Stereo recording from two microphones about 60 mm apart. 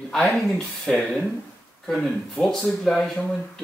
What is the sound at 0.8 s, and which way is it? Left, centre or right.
Speech, centre.